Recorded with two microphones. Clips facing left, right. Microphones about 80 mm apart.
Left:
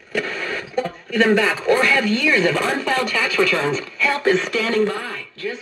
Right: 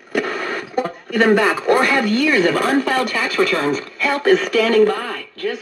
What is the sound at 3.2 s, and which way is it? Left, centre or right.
Speech, right.